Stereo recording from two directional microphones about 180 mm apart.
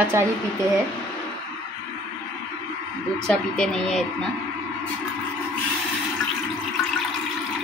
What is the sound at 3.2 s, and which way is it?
Speech, 5° left (ahead or behind).